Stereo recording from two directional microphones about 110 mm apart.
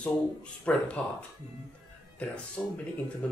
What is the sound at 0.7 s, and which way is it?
Speech, 10° left (ahead or behind).